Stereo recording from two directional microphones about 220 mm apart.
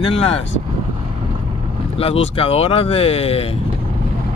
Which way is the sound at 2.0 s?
25° left (ahead or behind).